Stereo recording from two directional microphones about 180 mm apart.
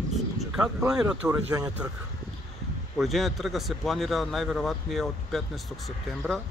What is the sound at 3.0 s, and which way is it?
A man's voice, centre (ahead or behind).